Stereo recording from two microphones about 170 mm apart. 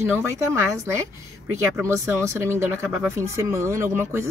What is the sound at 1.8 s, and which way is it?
Speech, 15° right (ahead or behind).